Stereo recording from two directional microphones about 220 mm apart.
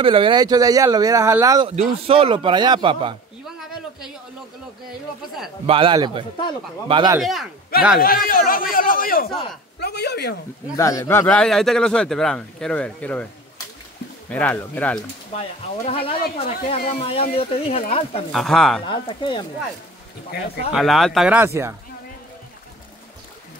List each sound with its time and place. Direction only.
0.0 s speech: 25° right (ahead or behind)
1.8 s a man's voice: 25° right (ahead or behind)
5.7 s a man's voice: 25° right (ahead or behind)
7.2 s a man's voice: centre (ahead or behind)
8.0 s speech: 40° left (ahead or behind)
10.8 s a man's voice: 15° left (ahead or behind)
14.3 s speech: 5° left (ahead or behind)
15.3 s speech: 25° left (ahead or behind)
18.3 s a man's voice: centre (ahead or behind)
18.9 s speech: 20° left (ahead or behind)
20.2 s speech: 45° left (ahead or behind)
20.7 s a man's voice: centre (ahead or behind)